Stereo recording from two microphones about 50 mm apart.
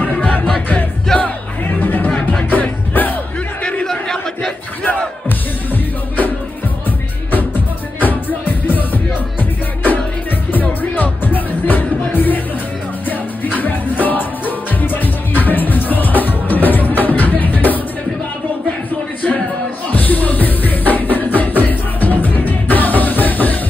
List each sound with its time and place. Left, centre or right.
0.0 s music: left
1.1 s music: centre
1.8 s music: left
3.8 s battle cry: centre
7.2 s music: left
13.4 s music: left
19.9 s music: left